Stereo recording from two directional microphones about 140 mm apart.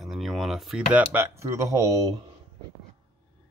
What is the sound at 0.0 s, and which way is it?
Speech, centre (ahead or behind).